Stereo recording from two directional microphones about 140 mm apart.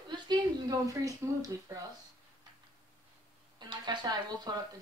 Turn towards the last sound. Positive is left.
turn(degrees=-30)  # may be behind; listen again after turning